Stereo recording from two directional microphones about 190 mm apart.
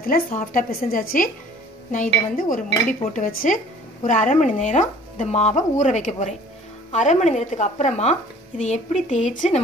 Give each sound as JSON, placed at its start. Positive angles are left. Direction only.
{"t": 0.0, "sound": "a woman's voice", "side_deg": 50}